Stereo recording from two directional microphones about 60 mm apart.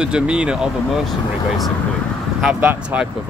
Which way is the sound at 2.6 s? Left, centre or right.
Right.